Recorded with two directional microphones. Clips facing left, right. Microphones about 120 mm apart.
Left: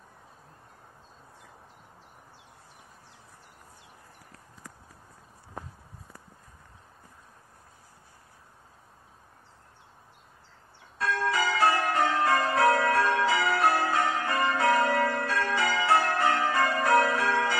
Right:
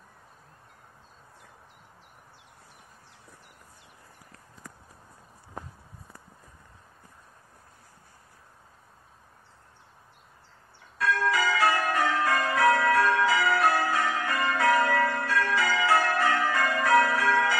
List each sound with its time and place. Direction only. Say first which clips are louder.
11.0 s change ringing: right 2 dB; 25° left (ahead or behind)